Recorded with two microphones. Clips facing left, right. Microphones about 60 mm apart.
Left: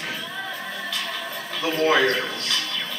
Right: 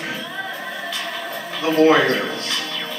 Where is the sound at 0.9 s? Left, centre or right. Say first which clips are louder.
Right 3 dB; centre.